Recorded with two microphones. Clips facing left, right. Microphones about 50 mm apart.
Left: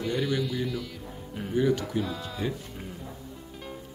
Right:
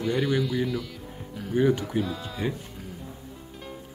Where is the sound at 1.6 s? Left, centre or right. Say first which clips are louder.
Right 3 dB; right.